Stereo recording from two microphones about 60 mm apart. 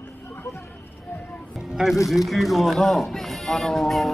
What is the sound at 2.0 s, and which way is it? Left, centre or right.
Speech, centre.